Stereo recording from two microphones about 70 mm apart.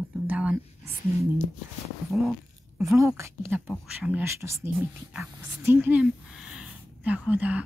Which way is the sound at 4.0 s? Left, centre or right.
Right.